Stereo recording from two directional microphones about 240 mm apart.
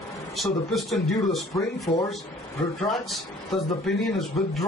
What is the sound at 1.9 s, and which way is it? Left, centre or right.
Speech, centre.